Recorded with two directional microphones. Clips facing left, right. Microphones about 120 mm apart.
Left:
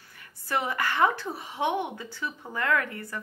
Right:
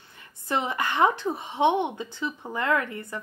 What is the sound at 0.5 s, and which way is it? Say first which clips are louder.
A woman's voice: right 1 dB; 20° right (ahead or behind).